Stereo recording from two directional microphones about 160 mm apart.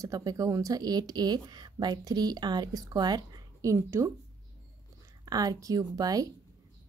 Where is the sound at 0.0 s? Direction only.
20° right (ahead or behind).